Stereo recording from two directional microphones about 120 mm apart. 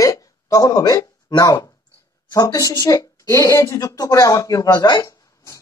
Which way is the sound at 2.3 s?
30° left (ahead or behind).